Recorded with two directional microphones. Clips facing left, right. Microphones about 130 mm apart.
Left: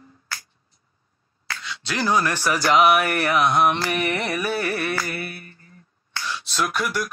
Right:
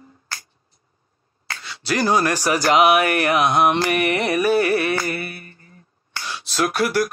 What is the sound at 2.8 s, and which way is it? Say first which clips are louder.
Mantra: right 2 dB; 70° right (ahead or behind).